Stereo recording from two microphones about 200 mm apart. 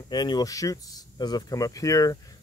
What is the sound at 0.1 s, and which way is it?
A man's voice, 20° left (ahead or behind).